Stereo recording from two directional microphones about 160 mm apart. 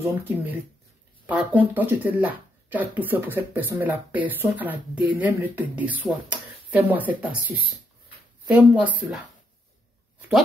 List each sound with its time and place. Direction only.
0.2 s speech: 10° right (ahead or behind)